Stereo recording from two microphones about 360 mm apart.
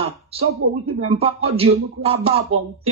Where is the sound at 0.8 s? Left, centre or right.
Right.